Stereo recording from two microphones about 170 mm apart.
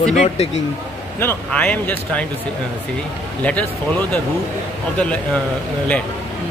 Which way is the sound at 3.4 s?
10° left (ahead or behind).